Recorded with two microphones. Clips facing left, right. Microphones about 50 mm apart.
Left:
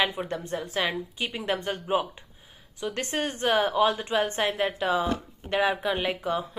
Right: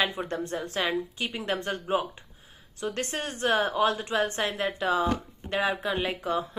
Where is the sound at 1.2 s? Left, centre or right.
Left.